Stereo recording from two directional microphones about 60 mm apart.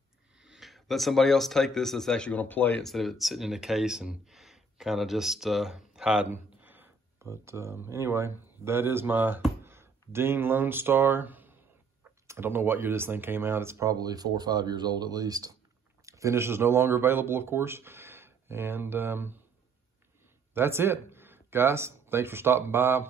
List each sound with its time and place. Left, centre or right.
0.4 s speech: centre
2.3 s speech: left
2.8 s speech: centre
6.3 s a sound: right
7.2 s speech: right
13.8 s speech: right
16.1 s speech: right
20.5 s speech: right